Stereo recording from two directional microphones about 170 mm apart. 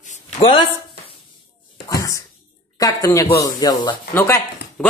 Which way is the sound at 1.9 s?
20° left (ahead or behind).